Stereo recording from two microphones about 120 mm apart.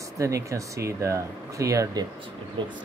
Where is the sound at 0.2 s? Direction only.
25° right (ahead or behind).